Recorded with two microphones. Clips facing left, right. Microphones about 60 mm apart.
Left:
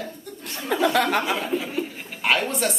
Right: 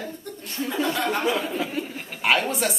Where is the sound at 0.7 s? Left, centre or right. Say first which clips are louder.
Left 5 dB; left.